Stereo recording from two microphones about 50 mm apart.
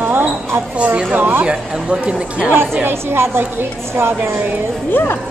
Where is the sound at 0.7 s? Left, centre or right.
Right.